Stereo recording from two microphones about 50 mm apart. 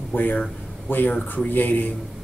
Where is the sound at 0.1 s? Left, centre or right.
Left.